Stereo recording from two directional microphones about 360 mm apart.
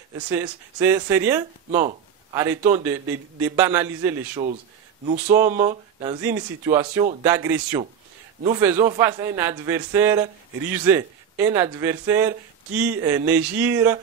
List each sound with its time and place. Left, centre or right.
0.3 s a man's voice: centre
5.0 s speech: centre
5.3 s a man's voice: centre